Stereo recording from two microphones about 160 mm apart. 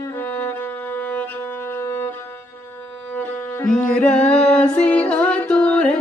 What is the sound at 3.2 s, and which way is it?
Music, 10° left (ahead or behind).